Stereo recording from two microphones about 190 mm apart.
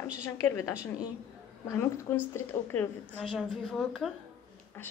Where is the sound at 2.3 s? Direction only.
10° left (ahead or behind).